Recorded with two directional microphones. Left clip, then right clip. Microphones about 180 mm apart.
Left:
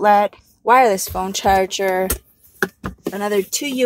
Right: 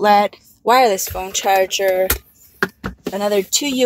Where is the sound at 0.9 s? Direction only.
20° left (ahead or behind).